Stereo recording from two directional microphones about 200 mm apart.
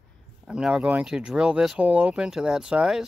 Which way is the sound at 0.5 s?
5° right (ahead or behind).